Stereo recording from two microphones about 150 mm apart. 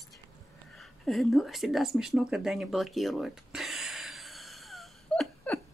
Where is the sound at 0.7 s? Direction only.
Centre (ahead or behind).